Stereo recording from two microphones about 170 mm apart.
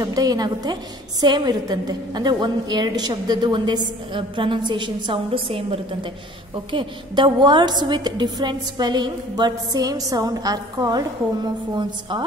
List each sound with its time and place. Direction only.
0.0 s a woman's voice: 20° right (ahead or behind)